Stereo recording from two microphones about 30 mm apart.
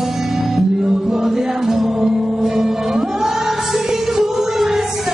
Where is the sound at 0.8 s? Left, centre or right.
Right.